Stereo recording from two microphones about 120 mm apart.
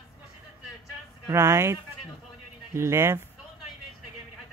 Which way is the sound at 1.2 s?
25° right (ahead or behind).